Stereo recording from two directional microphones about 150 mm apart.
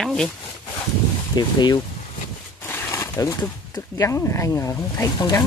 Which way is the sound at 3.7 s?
20° left (ahead or behind).